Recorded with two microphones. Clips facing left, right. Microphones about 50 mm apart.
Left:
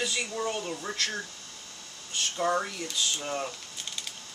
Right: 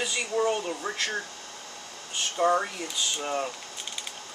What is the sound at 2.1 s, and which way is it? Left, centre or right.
Speech, centre.